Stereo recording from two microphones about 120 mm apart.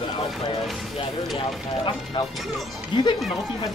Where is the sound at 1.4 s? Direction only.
45° left (ahead or behind).